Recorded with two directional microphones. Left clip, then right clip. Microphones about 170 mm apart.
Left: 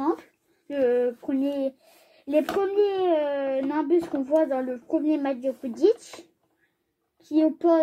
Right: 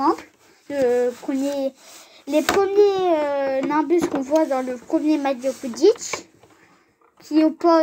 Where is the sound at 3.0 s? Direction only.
40° right (ahead or behind).